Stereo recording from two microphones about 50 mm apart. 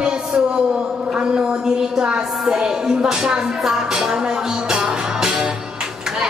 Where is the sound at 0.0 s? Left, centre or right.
Centre.